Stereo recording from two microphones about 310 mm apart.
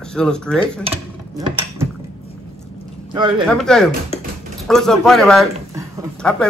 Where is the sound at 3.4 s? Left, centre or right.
Centre.